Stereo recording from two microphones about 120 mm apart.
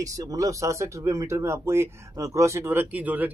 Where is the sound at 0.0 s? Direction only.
30° right (ahead or behind).